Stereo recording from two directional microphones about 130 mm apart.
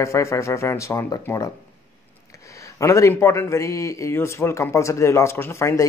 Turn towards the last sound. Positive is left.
turn(degrees=20)  # may be behind; listen again after turning